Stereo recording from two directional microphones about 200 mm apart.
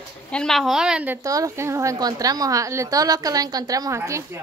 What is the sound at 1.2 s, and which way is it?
A woman's voice, 15° right (ahead or behind).